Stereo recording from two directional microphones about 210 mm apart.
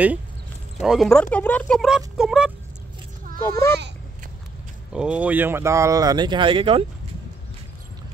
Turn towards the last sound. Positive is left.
turn(degrees=-25)  # may be behind; listen again after turning